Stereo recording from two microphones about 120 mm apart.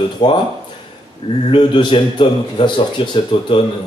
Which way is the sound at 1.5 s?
45° left (ahead or behind).